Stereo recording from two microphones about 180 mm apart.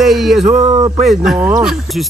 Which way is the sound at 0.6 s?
25° right (ahead or behind).